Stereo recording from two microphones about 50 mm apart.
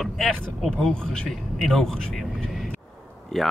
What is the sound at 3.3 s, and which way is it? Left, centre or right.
Speech, centre.